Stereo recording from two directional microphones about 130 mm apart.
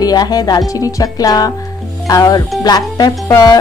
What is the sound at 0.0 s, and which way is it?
Speech, 30° left (ahead or behind).